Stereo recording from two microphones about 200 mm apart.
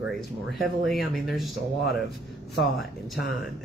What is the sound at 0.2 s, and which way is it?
Speech, centre (ahead or behind).